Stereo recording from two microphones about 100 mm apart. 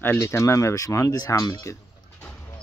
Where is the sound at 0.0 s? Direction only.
25° left (ahead or behind).